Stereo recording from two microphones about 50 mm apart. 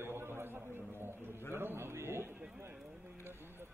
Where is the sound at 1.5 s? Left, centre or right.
Right.